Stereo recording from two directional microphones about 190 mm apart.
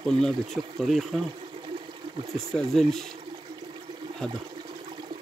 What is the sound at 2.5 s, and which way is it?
Speech, centre (ahead or behind).